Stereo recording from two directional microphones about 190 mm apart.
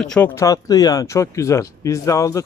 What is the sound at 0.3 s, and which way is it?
Speech, 15° left (ahead or behind).